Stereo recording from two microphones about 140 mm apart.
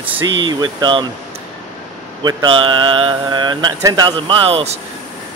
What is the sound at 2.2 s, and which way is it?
Speech, 35° right (ahead or behind).